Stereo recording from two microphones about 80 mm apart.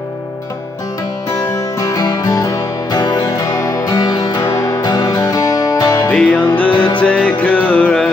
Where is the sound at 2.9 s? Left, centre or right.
Left.